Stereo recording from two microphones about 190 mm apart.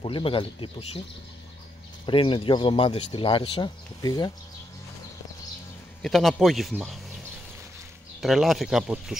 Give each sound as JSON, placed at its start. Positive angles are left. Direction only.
{"t": 0.0, "sound": "speech", "side_deg": 30}
{"t": 2.0, "sound": "speech", "side_deg": 25}
{"t": 6.0, "sound": "speech", "side_deg": 0}
{"t": 8.2, "sound": "speech", "side_deg": 0}